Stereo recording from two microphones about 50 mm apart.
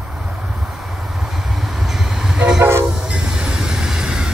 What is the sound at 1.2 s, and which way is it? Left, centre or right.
Vehicle, centre.